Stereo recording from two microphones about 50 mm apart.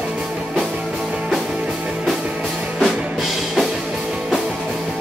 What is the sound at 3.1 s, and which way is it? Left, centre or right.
Music, centre.